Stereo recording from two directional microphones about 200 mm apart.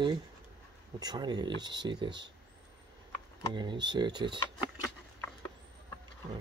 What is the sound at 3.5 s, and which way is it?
Speech, 20° right (ahead or behind).